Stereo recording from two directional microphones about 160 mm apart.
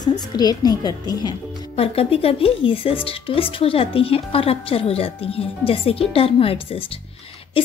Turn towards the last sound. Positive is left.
turn(degrees=35)  # may be behind; listen again after turning